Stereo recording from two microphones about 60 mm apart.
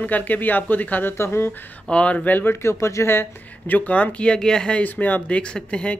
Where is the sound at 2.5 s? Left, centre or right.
Left.